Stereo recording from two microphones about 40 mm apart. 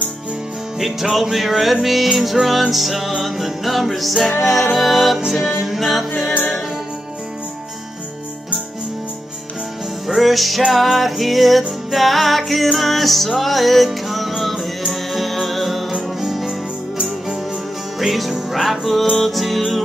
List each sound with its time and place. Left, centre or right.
1.3 s music: centre
2.4 s music: right
2.7 s music: centre
10.0 s music: centre
17.9 s music: centre